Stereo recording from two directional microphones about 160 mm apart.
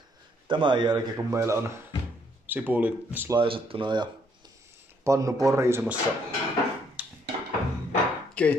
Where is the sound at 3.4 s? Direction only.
35° right (ahead or behind); by 6.0 s 15° right (ahead or behind).